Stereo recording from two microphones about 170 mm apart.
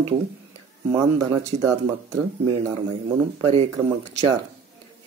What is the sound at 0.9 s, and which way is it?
Speech, 20° right (ahead or behind).